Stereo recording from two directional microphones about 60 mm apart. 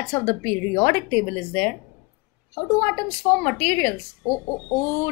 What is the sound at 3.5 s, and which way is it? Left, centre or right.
Speech, left.